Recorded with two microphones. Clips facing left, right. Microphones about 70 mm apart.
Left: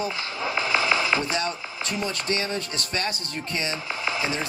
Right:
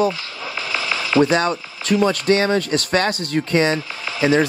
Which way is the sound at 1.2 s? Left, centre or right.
Right.